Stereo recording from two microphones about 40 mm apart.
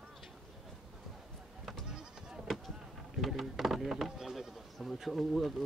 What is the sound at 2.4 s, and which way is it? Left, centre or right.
Vehicle, centre.